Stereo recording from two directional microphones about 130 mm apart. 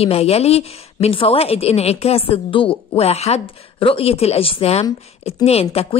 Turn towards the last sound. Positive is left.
turn(degrees=50)  # may be behind; listen again after turning